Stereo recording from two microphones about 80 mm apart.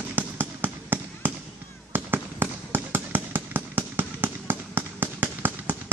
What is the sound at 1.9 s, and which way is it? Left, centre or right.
Fireworks, right.